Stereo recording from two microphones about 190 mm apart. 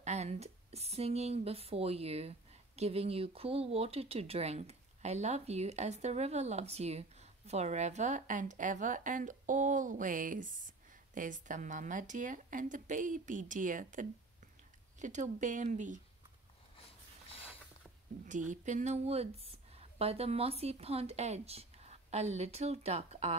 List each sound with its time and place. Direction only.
0.0 s speech: 35° right (ahead or behind)
18.2 s a woman's voice: 40° right (ahead or behind)